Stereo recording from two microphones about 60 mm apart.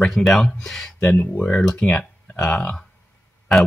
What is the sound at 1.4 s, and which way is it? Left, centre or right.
Speech, centre.